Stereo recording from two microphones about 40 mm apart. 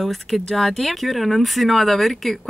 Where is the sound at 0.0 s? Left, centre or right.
Centre.